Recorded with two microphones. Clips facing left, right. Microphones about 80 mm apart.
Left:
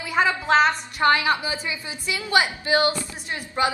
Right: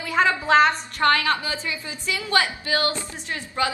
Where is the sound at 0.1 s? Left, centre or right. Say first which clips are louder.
Right 1 dB; centre.